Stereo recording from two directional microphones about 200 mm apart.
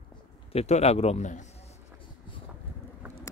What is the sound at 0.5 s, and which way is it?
Speech, 30° left (ahead or behind).